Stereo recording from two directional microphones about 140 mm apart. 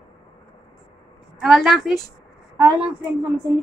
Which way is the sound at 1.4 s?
Centre (ahead or behind).